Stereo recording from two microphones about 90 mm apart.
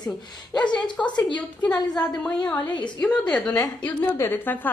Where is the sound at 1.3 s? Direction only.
15° left (ahead or behind).